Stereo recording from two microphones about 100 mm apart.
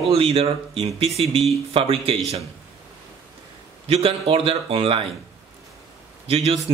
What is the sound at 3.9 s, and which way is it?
Speech, 75° right (ahead or behind).